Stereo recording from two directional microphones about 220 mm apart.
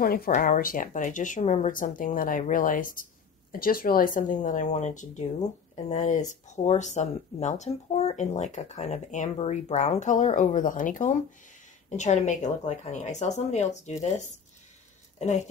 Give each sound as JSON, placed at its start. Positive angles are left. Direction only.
{"t": 0.0, "sound": "speech", "side_deg": 45}